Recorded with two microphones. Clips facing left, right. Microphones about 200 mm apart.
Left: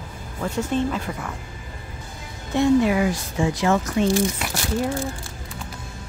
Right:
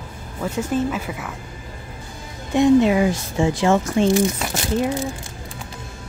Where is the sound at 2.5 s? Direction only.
20° right (ahead or behind).